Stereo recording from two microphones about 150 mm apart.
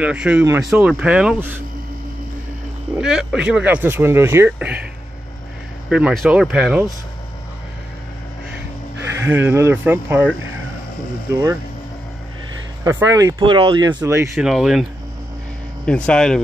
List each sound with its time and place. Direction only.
0.0 s speech: 10° right (ahead or behind)
3.0 s speech: 5° right (ahead or behind)
5.9 s speech: 5° right (ahead or behind)
9.2 s speech: 15° right (ahead or behind)
12.8 s speech: 20° right (ahead or behind)
14.0 s speech: 15° right (ahead or behind)
14.3 s speech: centre (ahead or behind)